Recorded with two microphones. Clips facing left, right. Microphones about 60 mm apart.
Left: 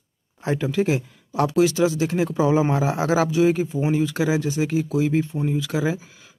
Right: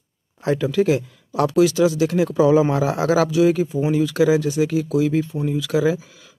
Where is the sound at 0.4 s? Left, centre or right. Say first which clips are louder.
Right 3 dB; left.